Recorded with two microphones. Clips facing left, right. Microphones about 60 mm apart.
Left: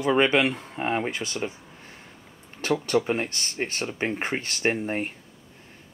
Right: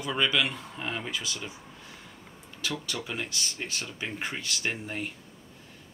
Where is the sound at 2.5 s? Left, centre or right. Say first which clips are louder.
Left 11 dB; left.